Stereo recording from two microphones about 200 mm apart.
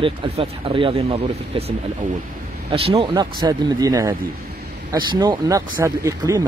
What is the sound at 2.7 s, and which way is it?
Speech, 30° right (ahead or behind).